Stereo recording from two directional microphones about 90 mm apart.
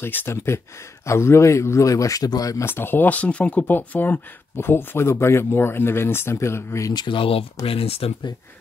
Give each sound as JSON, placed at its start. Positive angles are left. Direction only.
{"t": 0.0, "sound": "speech", "side_deg": 25}
{"t": 2.6, "sound": "speech", "side_deg": 25}
{"t": 6.9, "sound": "speech", "side_deg": 55}
{"t": 7.2, "sound": "speech", "side_deg": 90}